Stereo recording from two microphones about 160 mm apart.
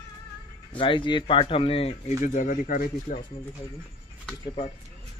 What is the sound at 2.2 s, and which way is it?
Speech, 55° left (ahead or behind).